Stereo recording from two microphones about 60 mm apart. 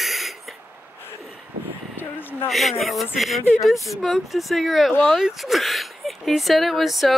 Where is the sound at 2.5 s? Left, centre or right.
Centre.